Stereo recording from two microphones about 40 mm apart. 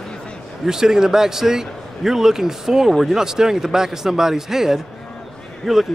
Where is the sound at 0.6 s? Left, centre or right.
Centre.